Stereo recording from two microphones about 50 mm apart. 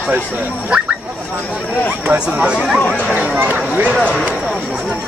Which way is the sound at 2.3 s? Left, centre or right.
Centre.